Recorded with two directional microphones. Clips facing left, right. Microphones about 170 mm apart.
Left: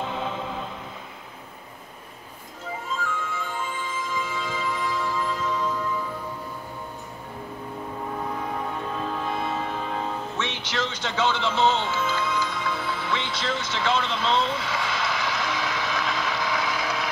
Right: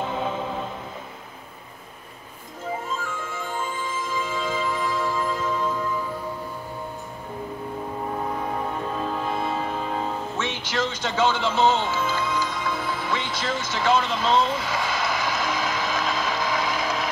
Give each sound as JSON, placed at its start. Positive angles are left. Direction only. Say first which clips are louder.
{"t": 4.1, "sound": "music", "louder": "right 4 dB", "side_deg": -40}
{"t": 8.9, "sound": "music", "louder": "right 1 dB", "side_deg": -35}